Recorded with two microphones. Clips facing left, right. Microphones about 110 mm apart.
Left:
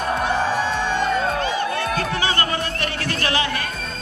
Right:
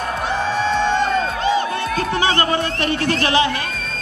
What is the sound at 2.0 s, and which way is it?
Music, 25° right (ahead or behind).